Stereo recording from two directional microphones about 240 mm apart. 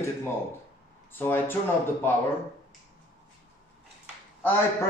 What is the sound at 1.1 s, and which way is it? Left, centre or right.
Speech, centre.